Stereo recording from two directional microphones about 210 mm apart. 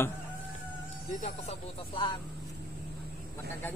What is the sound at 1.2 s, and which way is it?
Speech, 25° left (ahead or behind).